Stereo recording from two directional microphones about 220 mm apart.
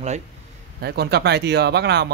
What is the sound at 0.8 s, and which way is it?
Speech, 50° right (ahead or behind).